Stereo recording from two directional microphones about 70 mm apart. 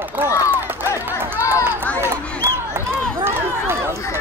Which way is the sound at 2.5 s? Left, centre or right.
Right.